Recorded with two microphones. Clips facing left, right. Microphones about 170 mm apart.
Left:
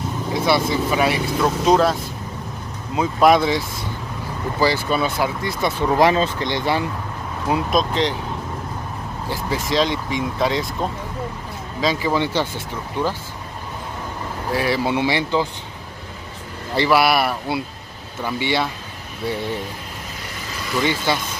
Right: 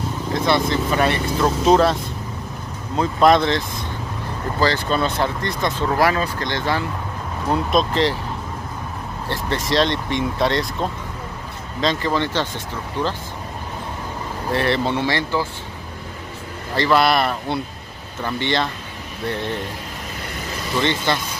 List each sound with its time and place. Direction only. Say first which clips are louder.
0.3 s speech: even; 5° left (ahead or behind)
3.0 s speech: even; 5° left (ahead or behind)
5.9 s speech: left 4 dB; 20° left (ahead or behind)
7.4 s speech: right 1 dB; 5° left (ahead or behind)
9.3 s speech: right 1 dB; centre (ahead or behind)
14.5 s speech: even; 5° left (ahead or behind)
16.7 s speech: even; 10° left (ahead or behind)
20.8 s speech: even; 10° left (ahead or behind)